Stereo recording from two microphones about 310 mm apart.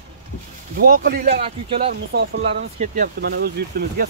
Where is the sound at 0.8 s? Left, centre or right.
Right.